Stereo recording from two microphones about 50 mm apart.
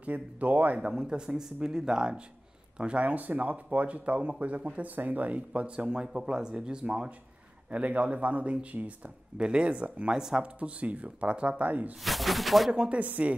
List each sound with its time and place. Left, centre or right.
0.0 s speech: right
0.7 s speech: centre
7.7 s speech: right
10.1 s speech: centre
10.4 s speech: right
12.0 s speech: centre
12.7 s speech: centre
13.0 s speech: right